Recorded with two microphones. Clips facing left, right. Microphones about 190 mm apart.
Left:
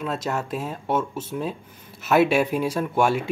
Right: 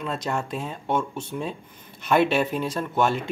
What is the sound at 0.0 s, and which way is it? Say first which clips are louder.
Speech: left 1 dB; 5° left (ahead or behind).